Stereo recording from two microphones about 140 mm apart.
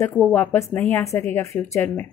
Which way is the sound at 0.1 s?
10° left (ahead or behind).